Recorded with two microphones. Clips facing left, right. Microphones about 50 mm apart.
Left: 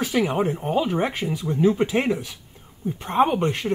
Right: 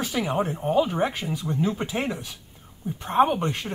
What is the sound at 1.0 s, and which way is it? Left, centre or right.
Speech, left.